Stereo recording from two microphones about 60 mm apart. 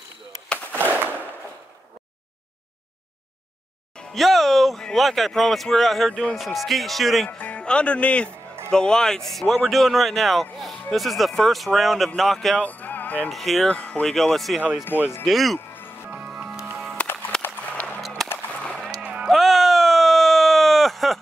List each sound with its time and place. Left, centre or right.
0.7 s a sound: right
3.9 s music: centre
4.2 s music: centre
4.9 s speech: centre
7.2 s speech: left; by 12.6 s centre
12.6 s music: left
13.3 s speech: centre
13.7 s speech: left
14.0 s speech: centre
16.3 s music: centre
17.3 s a sound: centre
18.0 s music: centre
19.2 s a sound: centre